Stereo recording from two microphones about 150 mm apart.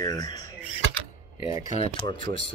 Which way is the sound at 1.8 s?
35° left (ahead or behind).